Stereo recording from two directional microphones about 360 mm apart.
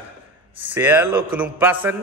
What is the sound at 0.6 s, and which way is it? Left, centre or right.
A man's voice, centre.